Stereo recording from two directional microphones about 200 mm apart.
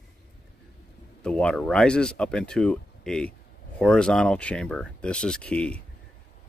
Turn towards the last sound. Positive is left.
turn(degrees=5)  # may be behind; listen again after turning